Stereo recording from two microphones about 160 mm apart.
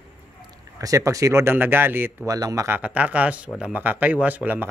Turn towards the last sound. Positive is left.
turn(degrees=-10)  # may be behind; listen again after turning